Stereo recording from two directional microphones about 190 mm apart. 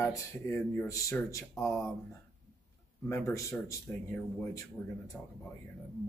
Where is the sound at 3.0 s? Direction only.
15° left (ahead or behind).